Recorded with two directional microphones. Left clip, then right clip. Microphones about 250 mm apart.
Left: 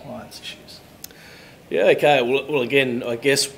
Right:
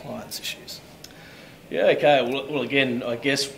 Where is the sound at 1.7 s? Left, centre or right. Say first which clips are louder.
Left 2 dB; left.